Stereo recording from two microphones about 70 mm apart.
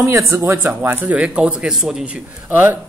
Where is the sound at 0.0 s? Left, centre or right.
Right.